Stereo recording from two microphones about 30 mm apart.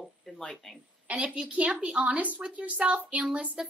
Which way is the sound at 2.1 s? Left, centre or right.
Right.